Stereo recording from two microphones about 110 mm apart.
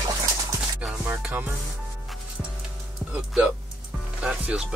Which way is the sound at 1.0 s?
15° right (ahead or behind).